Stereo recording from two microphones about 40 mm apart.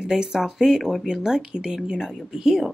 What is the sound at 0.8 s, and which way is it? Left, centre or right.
Speech, centre.